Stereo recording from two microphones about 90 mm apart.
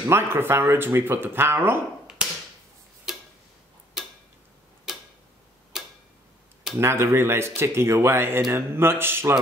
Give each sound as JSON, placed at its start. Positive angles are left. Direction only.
{"t": 0.1, "sound": "speech", "side_deg": -25}
{"t": 3.1, "sound": "tick-tock", "side_deg": -5}
{"t": 6.8, "sound": "speech", "side_deg": -30}